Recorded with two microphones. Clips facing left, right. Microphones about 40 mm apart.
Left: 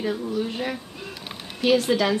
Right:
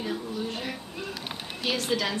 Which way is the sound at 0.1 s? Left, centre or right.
Centre.